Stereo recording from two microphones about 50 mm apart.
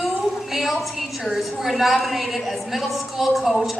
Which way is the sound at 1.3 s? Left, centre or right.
Centre.